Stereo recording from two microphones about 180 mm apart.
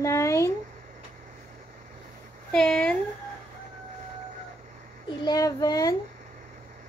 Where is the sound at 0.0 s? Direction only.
15° left (ahead or behind).